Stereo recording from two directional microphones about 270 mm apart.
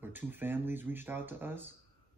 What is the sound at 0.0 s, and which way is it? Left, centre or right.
Speech, centre.